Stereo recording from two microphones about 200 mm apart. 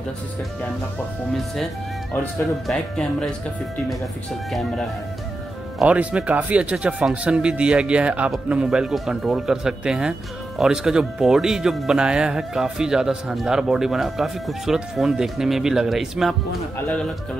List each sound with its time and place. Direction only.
2.6 s speech: 5° left (ahead or behind)